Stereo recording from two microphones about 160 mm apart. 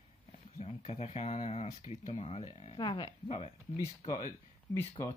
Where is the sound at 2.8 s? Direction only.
25° left (ahead or behind).